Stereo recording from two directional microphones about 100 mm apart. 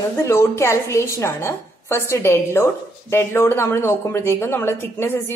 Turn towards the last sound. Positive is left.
turn(degrees=20)  # may be behind; listen again after turning